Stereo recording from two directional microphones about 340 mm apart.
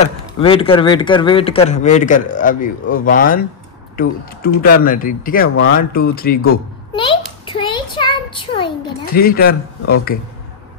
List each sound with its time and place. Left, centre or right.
0.0 s speech: centre
7.4 s a sound: centre
9.0 s speech: left